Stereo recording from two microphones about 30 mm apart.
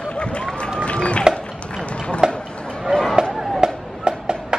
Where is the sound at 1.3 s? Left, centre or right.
Left.